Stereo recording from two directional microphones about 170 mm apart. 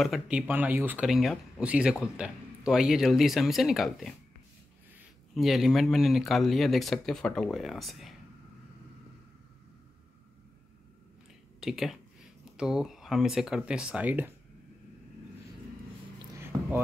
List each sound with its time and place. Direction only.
0.0 s speech: 5° right (ahead or behind)
5.3 s speech: centre (ahead or behind)
11.6 s speech: centre (ahead or behind)
16.3 s a sound: 10° right (ahead or behind)